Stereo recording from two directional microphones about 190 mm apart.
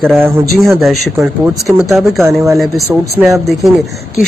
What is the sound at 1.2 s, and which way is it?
Speech, 15° right (ahead or behind).